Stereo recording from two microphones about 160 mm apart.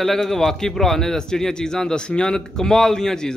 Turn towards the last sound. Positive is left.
turn(degrees=5)  # may be behind; listen again after turning